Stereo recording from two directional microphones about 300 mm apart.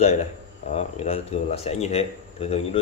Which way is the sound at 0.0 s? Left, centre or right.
Left.